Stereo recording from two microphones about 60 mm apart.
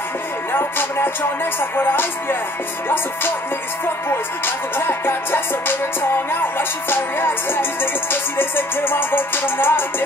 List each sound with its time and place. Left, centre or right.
0.5 s music: left
4.7 s music: left
6.9 s music: left